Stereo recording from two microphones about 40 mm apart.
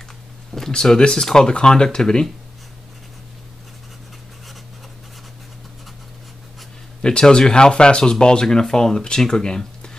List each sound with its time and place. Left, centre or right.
0.6 s speech: centre
7.0 s speech: centre